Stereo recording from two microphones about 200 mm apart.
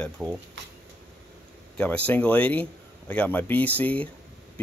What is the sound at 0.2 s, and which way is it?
Speech, centre (ahead or behind).